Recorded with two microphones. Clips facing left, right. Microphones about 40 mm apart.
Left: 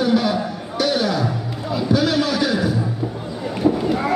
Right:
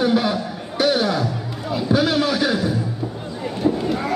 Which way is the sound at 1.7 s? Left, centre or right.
Centre.